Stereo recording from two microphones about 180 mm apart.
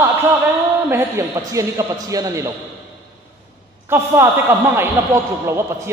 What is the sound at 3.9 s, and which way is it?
A man's voice, 15° right (ahead or behind).